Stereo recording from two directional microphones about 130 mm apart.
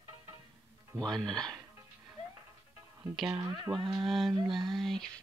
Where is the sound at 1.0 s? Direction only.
5° left (ahead or behind).